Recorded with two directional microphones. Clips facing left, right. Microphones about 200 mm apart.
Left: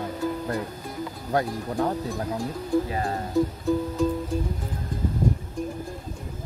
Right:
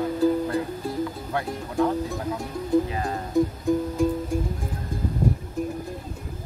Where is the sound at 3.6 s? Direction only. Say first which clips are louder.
Right 1 dB; 10° right (ahead or behind).